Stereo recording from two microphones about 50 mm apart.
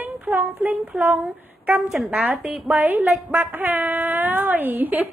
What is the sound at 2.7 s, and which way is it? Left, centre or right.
A woman's voice, right.